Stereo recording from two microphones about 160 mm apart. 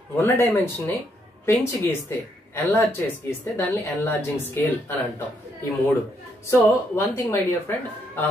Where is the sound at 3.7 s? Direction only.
15° left (ahead or behind).